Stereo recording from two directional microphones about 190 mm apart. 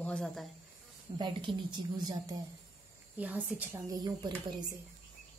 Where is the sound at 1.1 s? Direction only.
25° right (ahead or behind).